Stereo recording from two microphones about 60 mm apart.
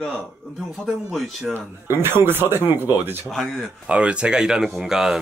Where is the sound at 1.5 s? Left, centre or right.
Right.